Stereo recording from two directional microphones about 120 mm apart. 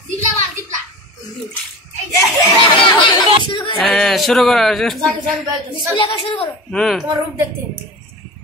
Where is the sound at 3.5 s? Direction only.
40° left (ahead or behind).